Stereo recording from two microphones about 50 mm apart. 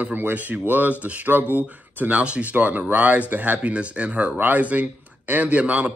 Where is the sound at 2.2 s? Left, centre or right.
Right.